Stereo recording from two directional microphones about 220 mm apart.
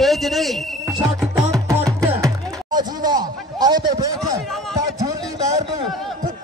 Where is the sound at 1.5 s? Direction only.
15° right (ahead or behind).